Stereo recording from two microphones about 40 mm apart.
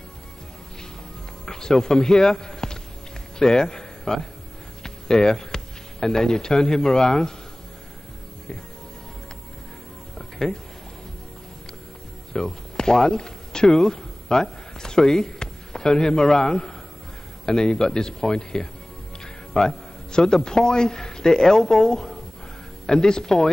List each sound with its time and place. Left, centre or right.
1.4 s a man's voice: centre
10.1 s music: centre
12.3 s a man's voice: centre